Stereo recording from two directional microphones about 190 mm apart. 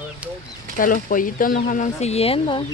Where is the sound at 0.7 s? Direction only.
45° left (ahead or behind); by 2.6 s 30° left (ahead or behind).